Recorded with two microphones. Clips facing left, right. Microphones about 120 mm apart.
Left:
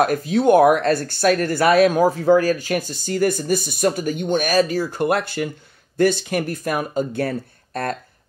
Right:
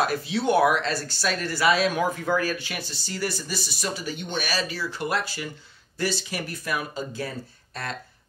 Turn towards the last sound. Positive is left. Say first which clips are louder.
# left 9 dB
turn(degrees=50)  # may be behind; listen again after turning